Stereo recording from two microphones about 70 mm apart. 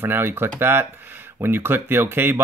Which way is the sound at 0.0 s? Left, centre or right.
Right.